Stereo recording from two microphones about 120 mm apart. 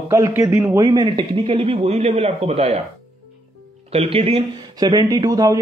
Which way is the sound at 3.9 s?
55° right (ahead or behind).